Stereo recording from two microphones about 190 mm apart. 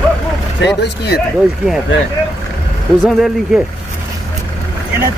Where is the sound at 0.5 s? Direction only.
65° left (ahead or behind).